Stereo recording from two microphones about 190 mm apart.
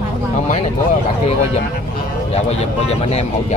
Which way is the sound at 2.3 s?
35° left (ahead or behind).